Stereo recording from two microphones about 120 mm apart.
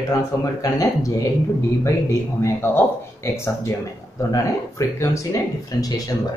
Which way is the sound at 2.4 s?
20° left (ahead or behind).